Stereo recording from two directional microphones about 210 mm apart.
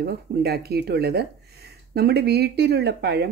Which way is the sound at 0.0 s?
50° right (ahead or behind).